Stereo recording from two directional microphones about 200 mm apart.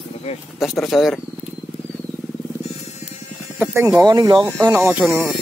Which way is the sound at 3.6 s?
10° right (ahead or behind).